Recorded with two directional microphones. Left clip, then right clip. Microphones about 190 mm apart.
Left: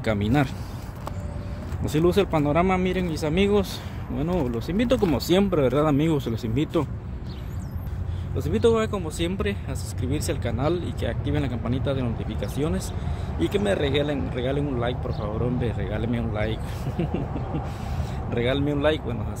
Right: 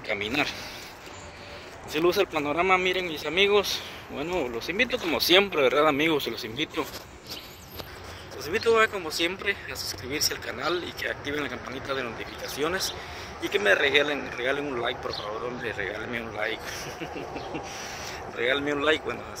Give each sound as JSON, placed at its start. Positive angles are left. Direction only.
{"t": 0.1, "sound": "speech", "side_deg": 20}
{"t": 1.9, "sound": "speech", "side_deg": 10}
{"t": 8.5, "sound": "speech", "side_deg": 5}
{"t": 18.4, "sound": "speech", "side_deg": 5}